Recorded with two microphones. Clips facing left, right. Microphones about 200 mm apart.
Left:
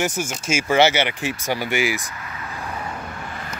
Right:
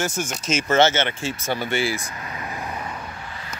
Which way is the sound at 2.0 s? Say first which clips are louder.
Right 1 dB; 30° right (ahead or behind).